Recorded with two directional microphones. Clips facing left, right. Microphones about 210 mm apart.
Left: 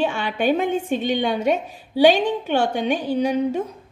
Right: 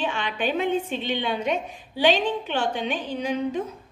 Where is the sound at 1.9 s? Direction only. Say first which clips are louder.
Left 6 dB; 10° left (ahead or behind).